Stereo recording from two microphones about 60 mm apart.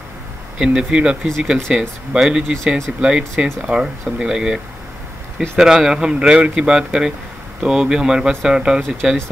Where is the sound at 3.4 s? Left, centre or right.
Centre.